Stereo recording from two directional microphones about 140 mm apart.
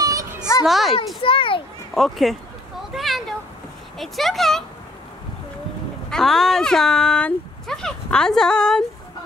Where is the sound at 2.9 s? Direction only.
Centre (ahead or behind).